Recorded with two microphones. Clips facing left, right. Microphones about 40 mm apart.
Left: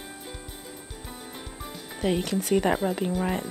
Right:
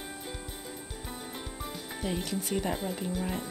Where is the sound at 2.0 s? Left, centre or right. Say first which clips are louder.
Left 8 dB; left.